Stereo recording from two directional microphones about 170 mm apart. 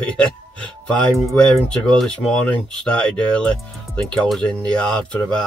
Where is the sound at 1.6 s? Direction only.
5° left (ahead or behind).